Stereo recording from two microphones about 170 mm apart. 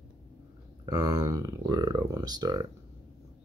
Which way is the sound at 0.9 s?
20° right (ahead or behind).